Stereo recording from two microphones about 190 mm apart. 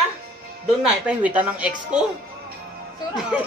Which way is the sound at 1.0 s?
10° right (ahead or behind).